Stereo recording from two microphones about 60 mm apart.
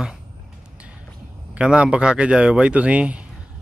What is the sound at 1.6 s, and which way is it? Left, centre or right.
Speech, centre.